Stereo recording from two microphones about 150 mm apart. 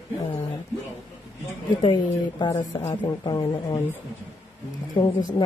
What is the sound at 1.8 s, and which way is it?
Speech, 30° left (ahead or behind).